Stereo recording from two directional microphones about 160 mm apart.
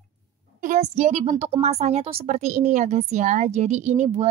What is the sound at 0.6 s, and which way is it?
A woman's voice, 50° right (ahead or behind).